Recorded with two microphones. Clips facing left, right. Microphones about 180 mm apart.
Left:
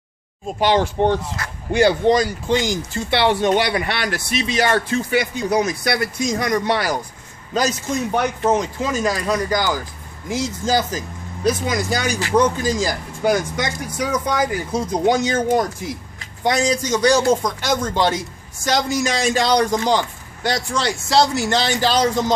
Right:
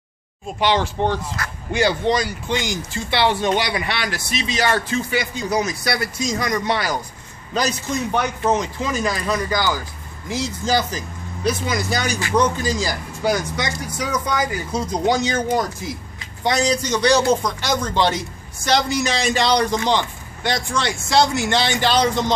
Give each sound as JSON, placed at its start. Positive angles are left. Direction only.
{"t": 0.5, "sound": "a man's voice", "side_deg": 45}
{"t": 1.1, "sound": "speech", "side_deg": 25}
{"t": 1.7, "sound": "a man's voice", "side_deg": 55}
{"t": 3.1, "sound": "speech", "side_deg": 60}
{"t": 7.5, "sound": "a man's voice", "side_deg": 45}